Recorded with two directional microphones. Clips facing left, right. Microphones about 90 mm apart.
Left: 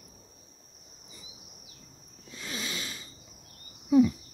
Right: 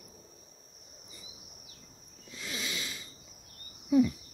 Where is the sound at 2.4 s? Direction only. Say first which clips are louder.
Left 1 dB; 35° left (ahead or behind).